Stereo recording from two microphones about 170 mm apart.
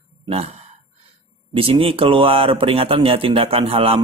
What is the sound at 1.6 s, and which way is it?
Speech, 35° right (ahead or behind).